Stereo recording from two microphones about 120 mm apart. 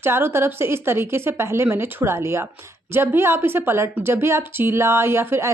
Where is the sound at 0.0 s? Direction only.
20° right (ahead or behind).